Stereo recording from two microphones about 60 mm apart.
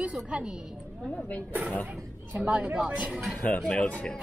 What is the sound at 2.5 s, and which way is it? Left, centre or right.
Speech, right.